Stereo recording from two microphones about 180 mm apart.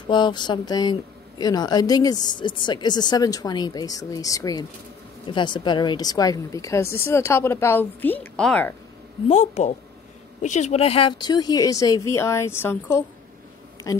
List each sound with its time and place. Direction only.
0.1 s a woman's voice: 25° left (ahead or behind); by 8.7 s 5° left (ahead or behind)
9.3 s a woman's voice: 40° left (ahead or behind); by 14.0 s 20° left (ahead or behind)